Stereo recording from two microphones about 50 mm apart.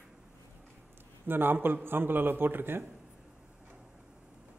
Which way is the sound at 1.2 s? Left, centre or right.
Right.